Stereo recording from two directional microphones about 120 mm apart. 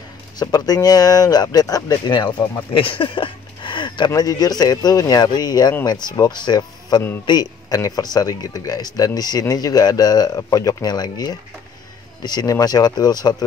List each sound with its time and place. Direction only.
0.4 s speech: 30° left (ahead or behind)
2.7 s a sound: 45° left (ahead or behind)
4.1 s speech: 30° left (ahead or behind)